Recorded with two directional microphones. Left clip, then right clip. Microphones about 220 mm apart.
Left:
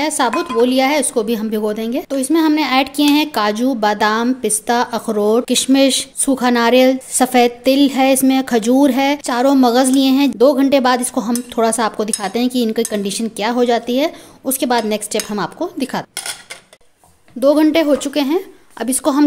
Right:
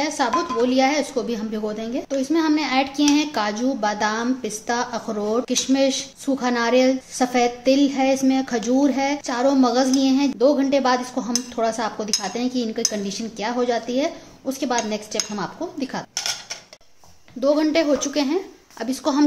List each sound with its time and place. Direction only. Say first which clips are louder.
0.4 s speech: left 4 dB; 40° left (ahead or behind)
17.4 s speech: left 6 dB; 35° left (ahead or behind)